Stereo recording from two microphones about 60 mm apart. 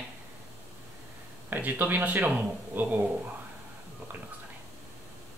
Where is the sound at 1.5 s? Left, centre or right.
Right.